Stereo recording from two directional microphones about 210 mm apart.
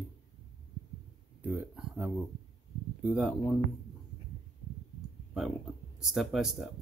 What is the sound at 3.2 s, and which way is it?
Speech, 5° right (ahead or behind).